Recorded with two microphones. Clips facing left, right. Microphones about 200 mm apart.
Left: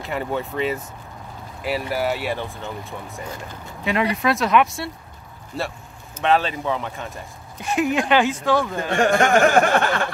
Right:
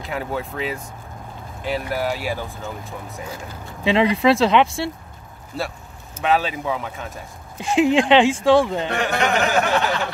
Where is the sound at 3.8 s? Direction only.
25° right (ahead or behind).